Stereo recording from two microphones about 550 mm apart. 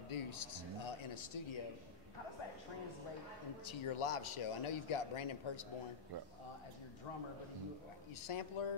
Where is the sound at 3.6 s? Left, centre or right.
Left.